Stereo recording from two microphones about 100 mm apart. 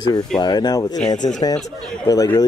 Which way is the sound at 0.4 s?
45° left (ahead or behind).